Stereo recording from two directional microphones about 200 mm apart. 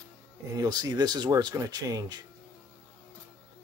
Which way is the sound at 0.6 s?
20° right (ahead or behind).